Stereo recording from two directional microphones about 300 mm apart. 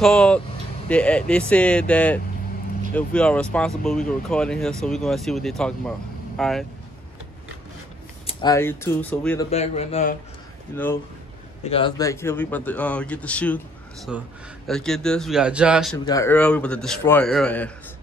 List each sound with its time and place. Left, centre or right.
0.0 s speech: centre
8.3 s speech: centre
9.5 s a man's voice: centre
10.7 s speech: centre
16.1 s speech: centre